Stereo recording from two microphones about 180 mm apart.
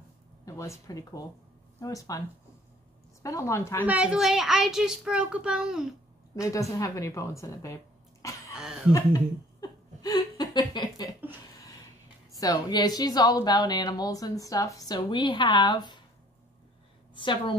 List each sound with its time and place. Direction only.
0.5 s a woman's voice: 15° left (ahead or behind)
3.8 s a child's voice: 5° right (ahead or behind)
6.4 s speech: 15° left (ahead or behind)
8.5 s a sound: 5° right (ahead or behind)
9.6 s a sound: 20° left (ahead or behind)
12.4 s a woman's voice: 20° left (ahead or behind)
17.1 s a woman's voice: 25° left (ahead or behind)